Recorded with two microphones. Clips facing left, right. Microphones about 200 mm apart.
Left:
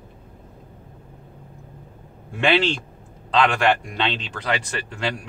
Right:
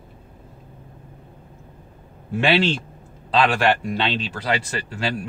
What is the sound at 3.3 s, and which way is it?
Speech, 5° right (ahead or behind).